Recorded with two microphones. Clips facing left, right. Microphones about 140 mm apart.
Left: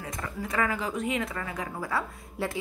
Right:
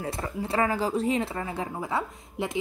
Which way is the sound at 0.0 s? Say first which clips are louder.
Right 4 dB; 30° right (ahead or behind).